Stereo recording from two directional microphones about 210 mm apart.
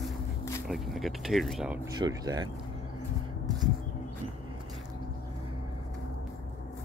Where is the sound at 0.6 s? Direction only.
Centre (ahead or behind).